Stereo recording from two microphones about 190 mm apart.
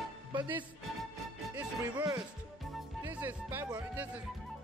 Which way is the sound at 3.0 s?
10° right (ahead or behind).